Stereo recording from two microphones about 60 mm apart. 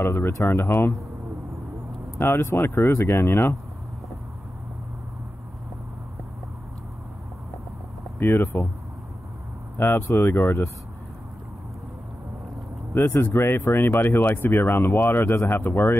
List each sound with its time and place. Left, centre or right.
0.0 s speech: left
0.3 s speech: left
0.7 s speech: left
2.1 s speech: left
8.2 s speech: left
9.8 s speech: left
12.9 s speech: left